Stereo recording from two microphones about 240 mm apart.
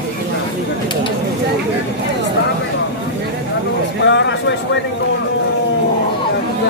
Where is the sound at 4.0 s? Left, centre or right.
Left.